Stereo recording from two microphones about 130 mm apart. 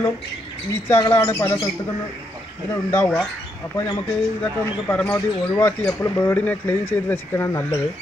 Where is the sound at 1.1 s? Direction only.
20° left (ahead or behind).